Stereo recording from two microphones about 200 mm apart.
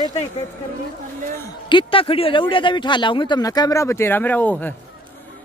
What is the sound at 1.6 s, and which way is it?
Speech, 25° left (ahead or behind).